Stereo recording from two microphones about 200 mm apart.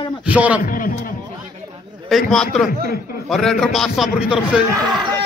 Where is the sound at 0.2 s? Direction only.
5° right (ahead or behind).